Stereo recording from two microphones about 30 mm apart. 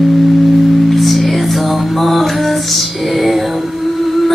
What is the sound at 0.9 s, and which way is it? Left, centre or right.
Music, centre.